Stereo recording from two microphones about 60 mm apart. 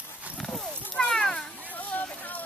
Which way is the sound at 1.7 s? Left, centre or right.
Left.